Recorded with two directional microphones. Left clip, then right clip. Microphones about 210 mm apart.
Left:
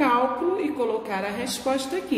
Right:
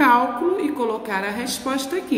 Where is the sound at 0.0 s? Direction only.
20° right (ahead or behind).